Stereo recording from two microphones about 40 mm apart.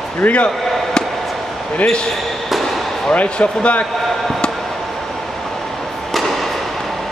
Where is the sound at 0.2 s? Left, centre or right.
Left.